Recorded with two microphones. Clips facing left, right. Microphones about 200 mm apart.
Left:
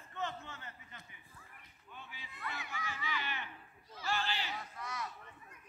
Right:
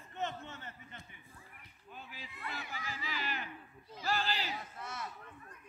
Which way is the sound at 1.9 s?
35° right (ahead or behind).